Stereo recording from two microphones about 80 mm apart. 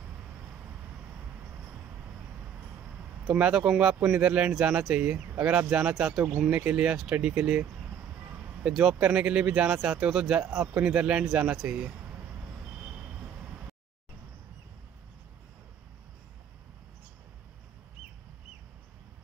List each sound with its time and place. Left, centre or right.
3.3 s speech: centre
9.0 s speech: centre